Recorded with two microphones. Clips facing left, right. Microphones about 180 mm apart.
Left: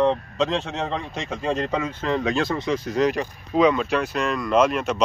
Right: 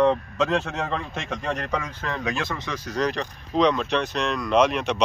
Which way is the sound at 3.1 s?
5° left (ahead or behind).